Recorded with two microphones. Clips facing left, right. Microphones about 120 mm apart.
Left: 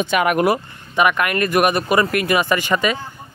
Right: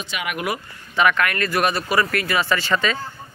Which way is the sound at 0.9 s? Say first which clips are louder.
Left 2 dB; 15° left (ahead or behind).